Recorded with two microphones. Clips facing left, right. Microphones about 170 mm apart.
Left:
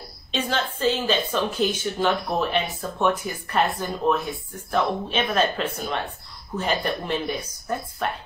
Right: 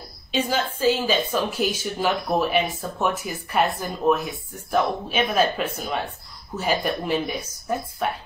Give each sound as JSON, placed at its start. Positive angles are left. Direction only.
{"t": 0.3, "sound": "a woman's voice", "side_deg": -5}